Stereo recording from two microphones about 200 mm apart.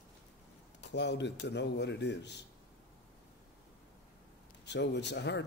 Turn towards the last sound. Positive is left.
turn(degrees=60)  # may be behind; listen again after turning